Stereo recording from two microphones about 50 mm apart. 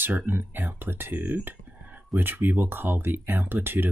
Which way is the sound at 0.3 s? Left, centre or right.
Right.